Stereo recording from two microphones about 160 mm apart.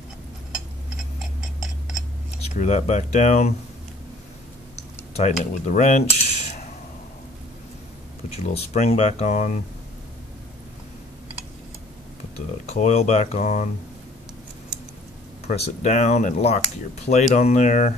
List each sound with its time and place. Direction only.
2.5 s speech: 45° left (ahead or behind)
4.7 s speech: 45° left (ahead or behind)
8.3 s speech: 40° left (ahead or behind)
12.6 s speech: 45° left (ahead or behind)
15.4 s speech: 40° left (ahead or behind)